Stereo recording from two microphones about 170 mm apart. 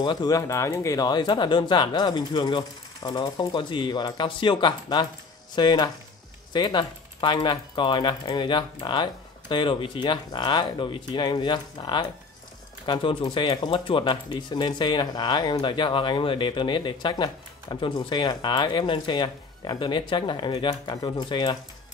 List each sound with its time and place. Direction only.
0.0 s speech: 25° left (ahead or behind)